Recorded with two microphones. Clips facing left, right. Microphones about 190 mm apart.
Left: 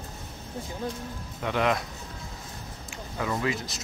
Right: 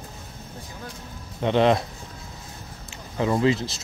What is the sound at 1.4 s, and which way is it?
Speech, 25° right (ahead or behind).